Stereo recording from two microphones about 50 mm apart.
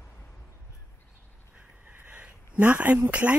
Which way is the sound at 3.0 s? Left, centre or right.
Right.